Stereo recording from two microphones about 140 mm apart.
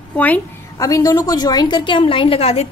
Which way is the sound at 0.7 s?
25° left (ahead or behind).